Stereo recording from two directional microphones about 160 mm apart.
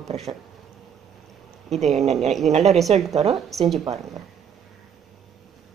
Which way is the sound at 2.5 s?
40° right (ahead or behind).